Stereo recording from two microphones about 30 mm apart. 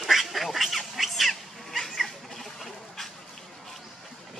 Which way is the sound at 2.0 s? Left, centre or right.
Centre.